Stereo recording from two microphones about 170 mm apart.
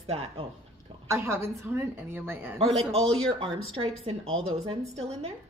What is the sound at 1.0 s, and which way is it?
A woman's voice, 15° right (ahead or behind).